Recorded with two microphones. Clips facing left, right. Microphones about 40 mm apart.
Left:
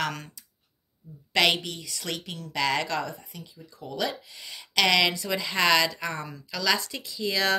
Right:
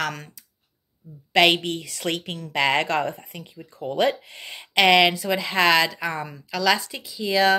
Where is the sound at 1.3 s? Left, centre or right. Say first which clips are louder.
Right 5 dB; right.